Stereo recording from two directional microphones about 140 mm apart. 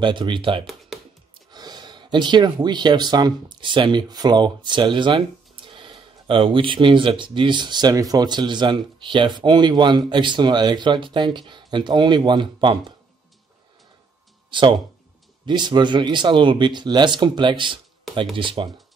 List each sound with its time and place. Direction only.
0.0 s speech: 35° right (ahead or behind)
14.5 s speech: 35° right (ahead or behind)